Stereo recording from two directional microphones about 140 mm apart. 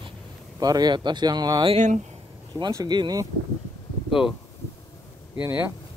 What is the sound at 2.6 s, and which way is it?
Speech, 30° right (ahead or behind).